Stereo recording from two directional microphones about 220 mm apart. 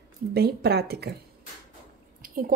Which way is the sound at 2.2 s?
40° right (ahead or behind).